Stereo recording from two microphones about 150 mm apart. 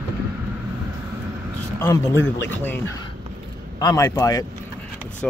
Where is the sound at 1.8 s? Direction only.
20° left (ahead or behind).